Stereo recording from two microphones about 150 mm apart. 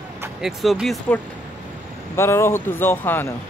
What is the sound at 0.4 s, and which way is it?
Speech, centre (ahead or behind).